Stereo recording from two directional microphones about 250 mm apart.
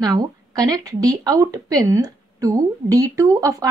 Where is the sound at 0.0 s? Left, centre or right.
Centre.